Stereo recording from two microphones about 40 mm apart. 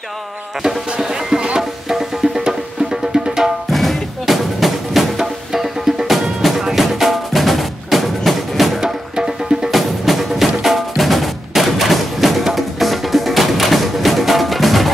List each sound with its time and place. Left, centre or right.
0.6 s music: centre
3.7 s music: centre